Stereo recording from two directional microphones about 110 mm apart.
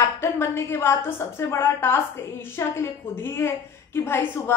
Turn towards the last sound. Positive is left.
turn(degrees=20)  # may be behind; listen again after turning